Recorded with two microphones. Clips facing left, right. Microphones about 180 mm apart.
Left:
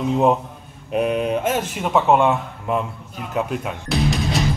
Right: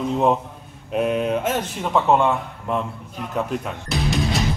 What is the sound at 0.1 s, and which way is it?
Speech, 5° left (ahead or behind).